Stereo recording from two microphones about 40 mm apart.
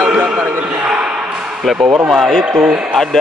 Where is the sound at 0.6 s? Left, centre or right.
Right.